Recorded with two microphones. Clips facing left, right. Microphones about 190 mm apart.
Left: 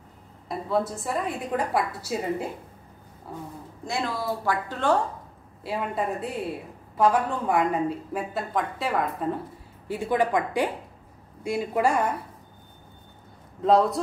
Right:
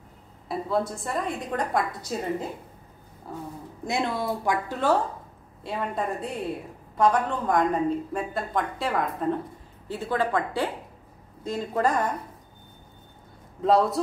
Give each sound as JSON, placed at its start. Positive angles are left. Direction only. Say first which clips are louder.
{"t": 0.5, "sound": "a woman's voice", "louder": "even", "side_deg": 0}
{"t": 3.8, "sound": "speech", "louder": "right 2 dB", "side_deg": -20}
{"t": 4.6, "sound": "a woman's voice", "louder": "even", "side_deg": -5}
{"t": 5.6, "sound": "a woman's voice", "louder": "left 1 dB", "side_deg": 5}
{"t": 9.8, "sound": "speech", "louder": "left 2 dB", "side_deg": 15}
{"t": 13.6, "sound": "a woman's voice", "louder": "left 1 dB", "side_deg": 0}